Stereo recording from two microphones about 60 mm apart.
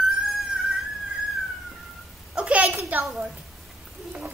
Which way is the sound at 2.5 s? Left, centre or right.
Right.